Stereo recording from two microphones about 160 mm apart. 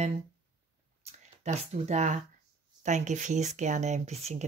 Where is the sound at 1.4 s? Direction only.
45° right (ahead or behind).